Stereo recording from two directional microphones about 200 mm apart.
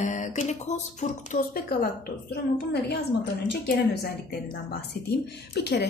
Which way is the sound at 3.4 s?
50° left (ahead or behind).